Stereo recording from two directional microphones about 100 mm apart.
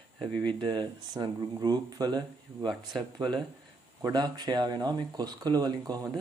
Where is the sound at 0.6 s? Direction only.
45° right (ahead or behind).